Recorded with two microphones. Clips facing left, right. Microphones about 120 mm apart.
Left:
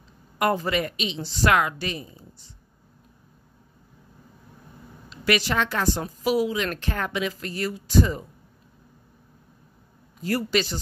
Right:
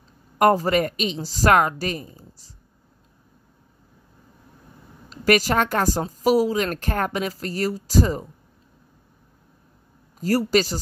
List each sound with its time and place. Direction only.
0.4 s a woman's voice: 40° right (ahead or behind)
5.1 s a woman's voice: 45° right (ahead or behind)
10.2 s a woman's voice: 40° right (ahead or behind)